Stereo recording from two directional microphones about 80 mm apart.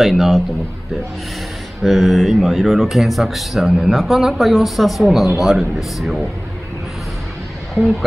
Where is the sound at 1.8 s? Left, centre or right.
Centre.